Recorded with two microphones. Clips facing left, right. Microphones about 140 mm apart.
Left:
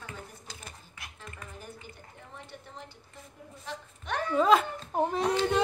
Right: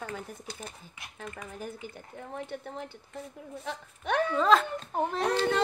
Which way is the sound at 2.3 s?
55° right (ahead or behind).